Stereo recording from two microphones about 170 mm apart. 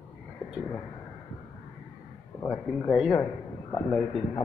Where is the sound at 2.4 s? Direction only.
Centre (ahead or behind).